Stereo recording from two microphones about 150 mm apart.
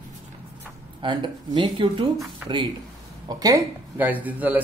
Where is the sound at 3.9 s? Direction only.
10° right (ahead or behind).